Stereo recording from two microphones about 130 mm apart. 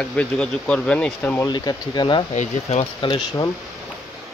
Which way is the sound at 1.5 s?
35° left (ahead or behind).